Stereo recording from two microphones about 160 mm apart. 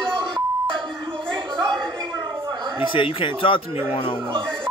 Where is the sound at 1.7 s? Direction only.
5° left (ahead or behind).